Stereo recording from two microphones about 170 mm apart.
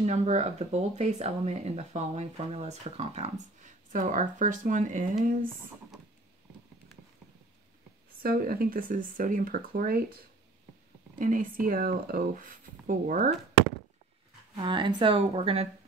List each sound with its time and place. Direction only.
0.0 s speech: 40° right (ahead or behind)
8.2 s speech: 60° right (ahead or behind)
11.1 s speech: 55° right (ahead or behind)
14.6 s speech: 30° right (ahead or behind)